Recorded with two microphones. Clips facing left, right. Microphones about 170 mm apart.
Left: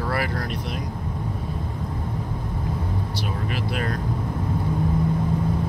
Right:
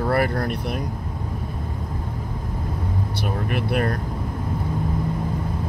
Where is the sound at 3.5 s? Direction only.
55° right (ahead or behind).